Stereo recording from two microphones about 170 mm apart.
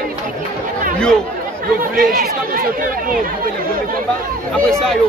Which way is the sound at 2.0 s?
60° right (ahead or behind).